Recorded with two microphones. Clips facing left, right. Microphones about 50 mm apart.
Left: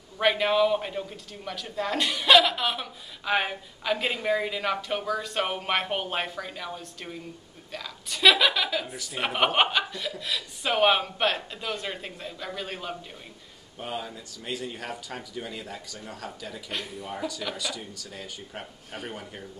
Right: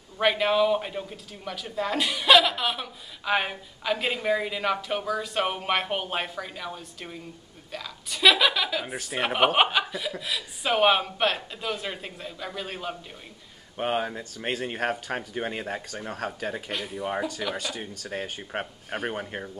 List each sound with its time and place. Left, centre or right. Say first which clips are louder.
0.2 s a man's voice: even; centre
13.7 s speech: right 7 dB; right